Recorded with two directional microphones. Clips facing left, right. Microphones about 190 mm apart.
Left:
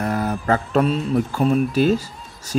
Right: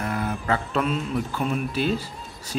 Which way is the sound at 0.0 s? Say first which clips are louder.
Left 5 dB; 40° left (ahead or behind).